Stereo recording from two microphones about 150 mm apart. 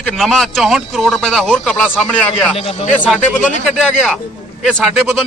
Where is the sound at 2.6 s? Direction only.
40° left (ahead or behind).